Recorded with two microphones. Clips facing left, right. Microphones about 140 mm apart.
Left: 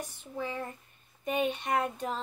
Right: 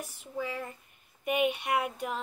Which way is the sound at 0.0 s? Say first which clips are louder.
Right 1 dB; 10° right (ahead or behind).